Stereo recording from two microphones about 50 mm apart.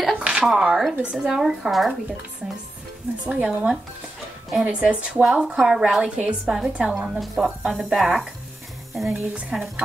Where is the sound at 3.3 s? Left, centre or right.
Centre.